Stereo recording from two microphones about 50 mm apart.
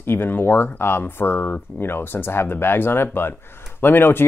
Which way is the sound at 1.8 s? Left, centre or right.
Left.